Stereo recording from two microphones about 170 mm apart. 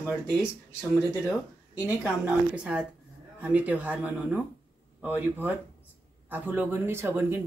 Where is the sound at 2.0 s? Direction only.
5° right (ahead or behind).